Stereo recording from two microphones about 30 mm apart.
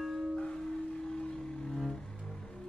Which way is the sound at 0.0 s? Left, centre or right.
Centre.